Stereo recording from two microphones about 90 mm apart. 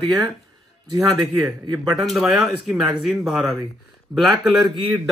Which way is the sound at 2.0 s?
Centre (ahead or behind).